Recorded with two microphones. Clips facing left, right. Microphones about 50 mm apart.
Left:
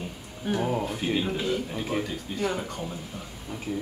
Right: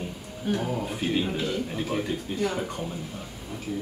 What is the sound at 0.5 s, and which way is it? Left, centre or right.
Speech, centre.